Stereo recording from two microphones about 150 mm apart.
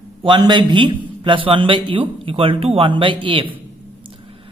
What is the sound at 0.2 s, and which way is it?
Speech, 30° right (ahead or behind).